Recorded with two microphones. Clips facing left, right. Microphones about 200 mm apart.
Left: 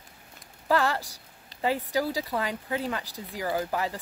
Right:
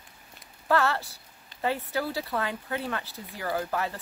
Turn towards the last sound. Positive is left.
turn(degrees=15)  # may be behind; listen again after turning